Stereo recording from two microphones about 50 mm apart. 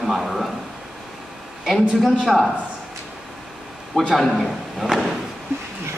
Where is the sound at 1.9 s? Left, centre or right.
Centre.